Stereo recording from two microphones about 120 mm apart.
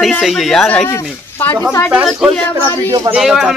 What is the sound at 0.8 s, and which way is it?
Speech, 20° left (ahead or behind).